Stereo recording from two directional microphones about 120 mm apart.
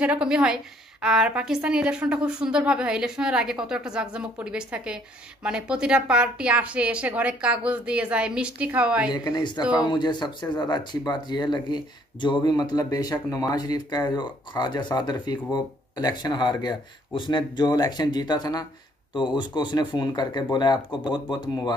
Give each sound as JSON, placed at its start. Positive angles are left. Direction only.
{"t": 0.0, "sound": "a woman's voice", "side_deg": -10}
{"t": 9.1, "sound": "speech", "side_deg": 35}